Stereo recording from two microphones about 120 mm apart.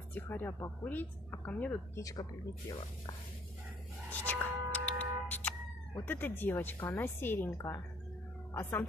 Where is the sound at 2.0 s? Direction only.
30° left (ahead or behind).